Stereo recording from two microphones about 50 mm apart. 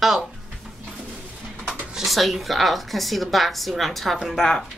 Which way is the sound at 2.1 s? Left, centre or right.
Centre.